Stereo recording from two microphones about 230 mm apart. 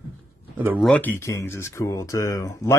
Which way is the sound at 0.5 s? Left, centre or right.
Centre.